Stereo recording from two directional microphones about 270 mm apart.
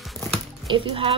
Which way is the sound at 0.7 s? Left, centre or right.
Centre.